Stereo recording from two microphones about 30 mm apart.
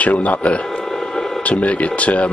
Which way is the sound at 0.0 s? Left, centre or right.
Left.